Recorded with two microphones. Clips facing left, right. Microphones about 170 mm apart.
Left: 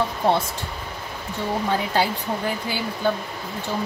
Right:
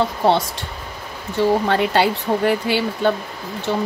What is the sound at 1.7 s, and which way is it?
Speech, 75° right (ahead or behind).